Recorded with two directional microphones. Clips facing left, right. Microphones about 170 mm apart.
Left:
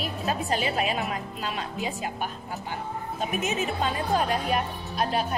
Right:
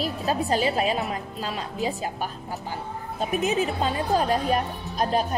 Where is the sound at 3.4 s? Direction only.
35° right (ahead or behind).